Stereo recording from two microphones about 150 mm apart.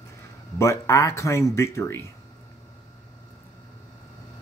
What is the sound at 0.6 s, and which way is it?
Speech, 20° left (ahead or behind).